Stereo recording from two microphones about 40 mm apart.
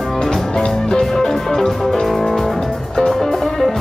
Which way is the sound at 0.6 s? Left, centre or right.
Centre.